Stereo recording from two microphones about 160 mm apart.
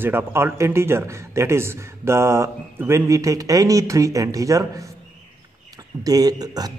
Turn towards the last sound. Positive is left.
turn(degrees=-25)  # may be behind; listen again after turning